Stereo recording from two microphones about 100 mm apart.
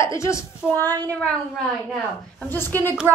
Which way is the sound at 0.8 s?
40° right (ahead or behind).